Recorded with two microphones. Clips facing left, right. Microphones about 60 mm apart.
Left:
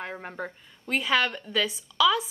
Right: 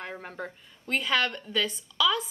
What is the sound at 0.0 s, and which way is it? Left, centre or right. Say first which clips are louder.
A woman's voice: left 2 dB; centre.